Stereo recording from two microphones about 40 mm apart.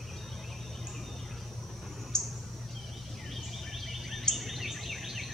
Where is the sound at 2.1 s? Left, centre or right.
Centre.